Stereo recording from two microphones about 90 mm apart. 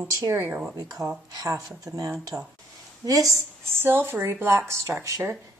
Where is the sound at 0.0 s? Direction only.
35° right (ahead or behind).